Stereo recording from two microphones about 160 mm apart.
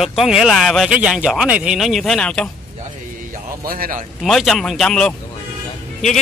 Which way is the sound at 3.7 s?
65° right (ahead or behind).